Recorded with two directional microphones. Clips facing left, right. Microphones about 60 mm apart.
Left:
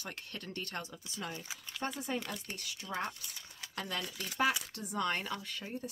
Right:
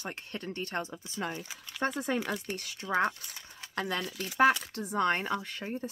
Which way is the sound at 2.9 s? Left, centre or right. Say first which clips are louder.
Right 10 dB; right.